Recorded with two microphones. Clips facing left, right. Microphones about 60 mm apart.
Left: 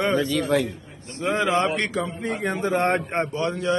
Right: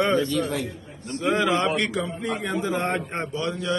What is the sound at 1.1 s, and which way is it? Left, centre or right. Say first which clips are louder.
A man's voice: even; left.